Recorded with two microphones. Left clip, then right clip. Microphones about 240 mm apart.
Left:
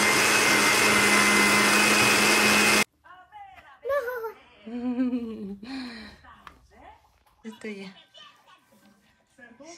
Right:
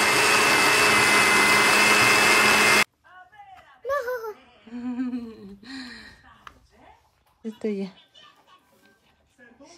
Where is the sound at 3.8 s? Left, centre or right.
Centre.